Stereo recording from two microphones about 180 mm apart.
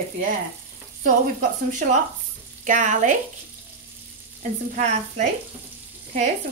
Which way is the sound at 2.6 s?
45° right (ahead or behind).